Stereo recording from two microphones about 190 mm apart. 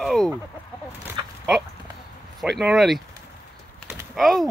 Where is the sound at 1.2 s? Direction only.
25° right (ahead or behind).